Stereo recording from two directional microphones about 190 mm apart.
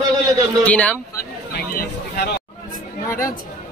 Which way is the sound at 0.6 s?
5° left (ahead or behind).